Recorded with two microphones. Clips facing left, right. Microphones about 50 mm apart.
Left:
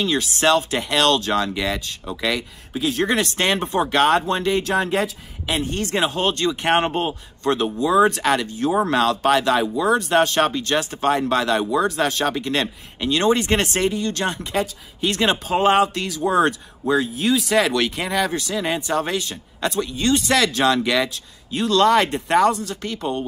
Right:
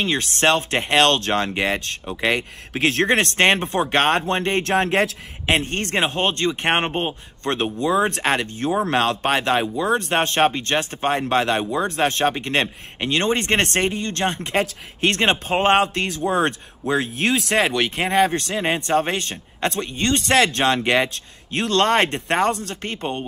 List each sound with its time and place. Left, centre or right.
0.0 s speech: right
2.7 s speech: right
7.4 s speech: right
7.8 s speech: right
16.9 s speech: right
17.6 s speech: right
21.5 s speech: right